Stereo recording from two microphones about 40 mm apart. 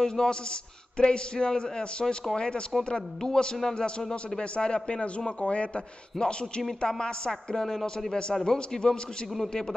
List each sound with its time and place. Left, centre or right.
0.0 s a man's voice: centre